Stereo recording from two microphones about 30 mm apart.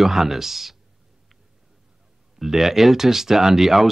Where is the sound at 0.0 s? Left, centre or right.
Centre.